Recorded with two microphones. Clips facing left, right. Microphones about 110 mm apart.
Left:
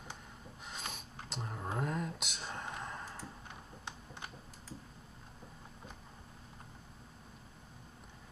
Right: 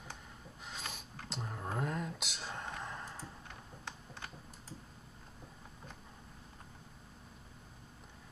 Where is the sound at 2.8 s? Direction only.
Centre (ahead or behind).